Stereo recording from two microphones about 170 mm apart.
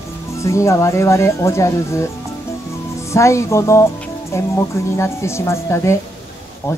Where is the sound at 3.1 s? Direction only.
15° left (ahead or behind).